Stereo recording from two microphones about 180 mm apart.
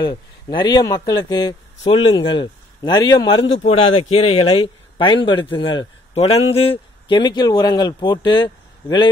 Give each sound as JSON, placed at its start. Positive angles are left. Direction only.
{"t": 0.0, "sound": "a man's voice", "side_deg": 25}